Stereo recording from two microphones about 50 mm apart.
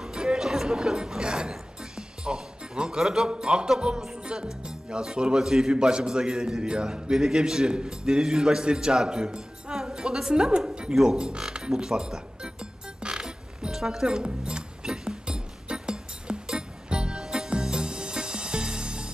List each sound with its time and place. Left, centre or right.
0.0 s music: centre
3.0 s a man's voice: centre
4.0 s music: centre
4.6 s a man's voice: centre
13.0 s music: centre